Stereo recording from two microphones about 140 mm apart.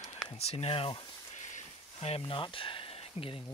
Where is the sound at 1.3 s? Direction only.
60° left (ahead or behind); by 3.4 s 40° left (ahead or behind).